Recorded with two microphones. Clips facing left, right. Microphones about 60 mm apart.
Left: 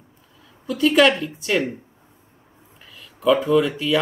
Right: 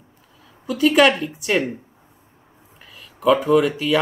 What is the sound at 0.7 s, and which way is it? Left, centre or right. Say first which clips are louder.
Speech: right 1 dB; centre.